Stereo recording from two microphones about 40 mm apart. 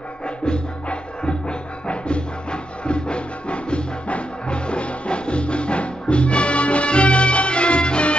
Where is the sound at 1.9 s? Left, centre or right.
Left.